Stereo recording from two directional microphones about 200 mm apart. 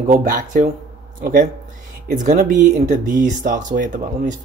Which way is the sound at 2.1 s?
40° right (ahead or behind).